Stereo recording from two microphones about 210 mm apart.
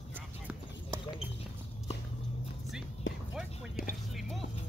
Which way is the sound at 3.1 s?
65° left (ahead or behind).